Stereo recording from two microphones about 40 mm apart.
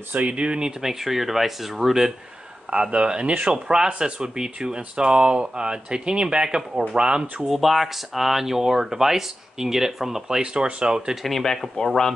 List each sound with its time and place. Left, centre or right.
0.1 s speech: right
0.8 s speech: centre
2.7 s speech: right
7.4 s speech: centre; by 11.1 s right
11.2 s speech: centre